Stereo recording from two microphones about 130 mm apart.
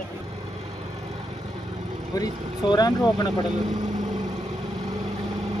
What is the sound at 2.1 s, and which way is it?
Speech, 30° left (ahead or behind).